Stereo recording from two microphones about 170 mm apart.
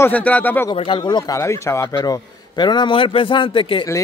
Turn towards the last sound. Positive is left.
turn(degrees=30)  # may be behind; listen again after turning